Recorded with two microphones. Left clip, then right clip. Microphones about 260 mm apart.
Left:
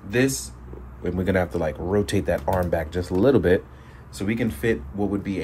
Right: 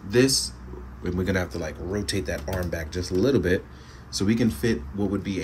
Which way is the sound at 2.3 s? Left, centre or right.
Left.